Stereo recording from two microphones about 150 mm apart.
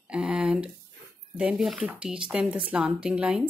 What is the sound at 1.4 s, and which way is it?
Speech, 5° right (ahead or behind).